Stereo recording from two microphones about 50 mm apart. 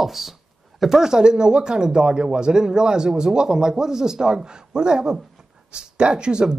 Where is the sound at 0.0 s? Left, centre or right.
Centre.